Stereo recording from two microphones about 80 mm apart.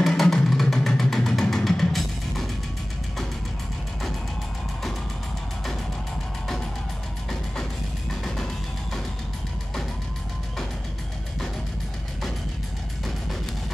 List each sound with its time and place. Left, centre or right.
0.0 s music: centre